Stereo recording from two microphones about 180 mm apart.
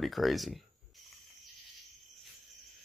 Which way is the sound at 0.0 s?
Centre (ahead or behind).